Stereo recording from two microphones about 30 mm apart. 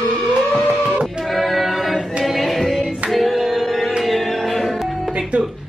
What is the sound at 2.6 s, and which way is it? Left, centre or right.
Hands, centre.